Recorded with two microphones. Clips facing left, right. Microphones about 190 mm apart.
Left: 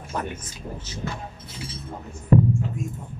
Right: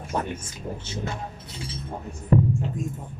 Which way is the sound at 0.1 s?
25° right (ahead or behind).